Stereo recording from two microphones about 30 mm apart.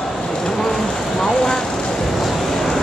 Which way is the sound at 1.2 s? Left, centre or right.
Left.